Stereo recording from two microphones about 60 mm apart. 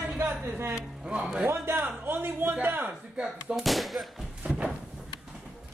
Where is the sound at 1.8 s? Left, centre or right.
Right.